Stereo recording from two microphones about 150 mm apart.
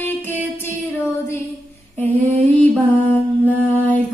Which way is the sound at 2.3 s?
10° left (ahead or behind).